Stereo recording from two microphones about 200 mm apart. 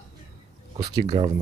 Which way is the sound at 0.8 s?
20° right (ahead or behind).